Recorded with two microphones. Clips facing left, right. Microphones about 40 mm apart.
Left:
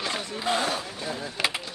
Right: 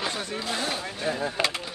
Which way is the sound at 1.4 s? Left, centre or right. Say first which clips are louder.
Left 1 dB; right.